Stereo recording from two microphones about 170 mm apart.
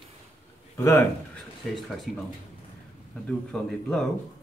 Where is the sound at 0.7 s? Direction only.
15° left (ahead or behind).